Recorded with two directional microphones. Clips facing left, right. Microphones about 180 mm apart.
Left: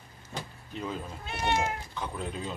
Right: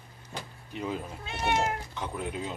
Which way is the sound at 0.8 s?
15° right (ahead or behind).